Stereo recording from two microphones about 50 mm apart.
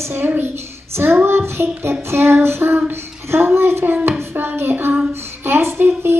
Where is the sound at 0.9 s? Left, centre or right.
Right.